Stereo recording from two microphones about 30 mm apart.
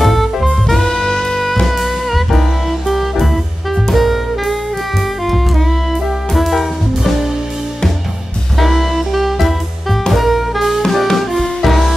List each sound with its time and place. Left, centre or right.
0.0 s music: centre
0.7 s music: left
1.7 s music: centre
3.7 s saxophone: centre
5.2 s music: centre
8.5 s music: centre
11.1 s music: centre